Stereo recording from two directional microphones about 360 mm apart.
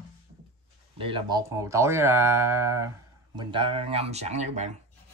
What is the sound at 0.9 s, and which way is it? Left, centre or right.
Speech, centre.